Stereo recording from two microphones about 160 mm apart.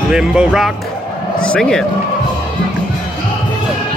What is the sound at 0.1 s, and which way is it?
Speech, 5° right (ahead or behind).